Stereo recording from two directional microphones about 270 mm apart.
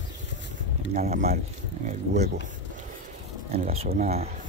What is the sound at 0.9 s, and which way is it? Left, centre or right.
Speech, right.